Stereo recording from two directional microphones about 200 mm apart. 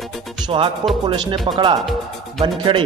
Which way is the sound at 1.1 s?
25° right (ahead or behind).